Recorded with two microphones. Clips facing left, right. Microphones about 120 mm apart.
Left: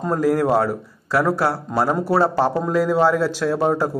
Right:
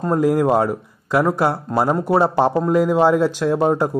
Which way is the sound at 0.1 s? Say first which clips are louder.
Right 2 dB; 15° right (ahead or behind).